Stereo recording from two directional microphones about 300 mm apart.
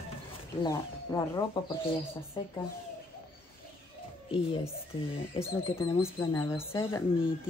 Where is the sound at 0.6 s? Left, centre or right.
Centre.